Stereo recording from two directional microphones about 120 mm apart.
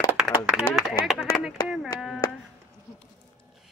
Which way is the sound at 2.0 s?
5° right (ahead or behind).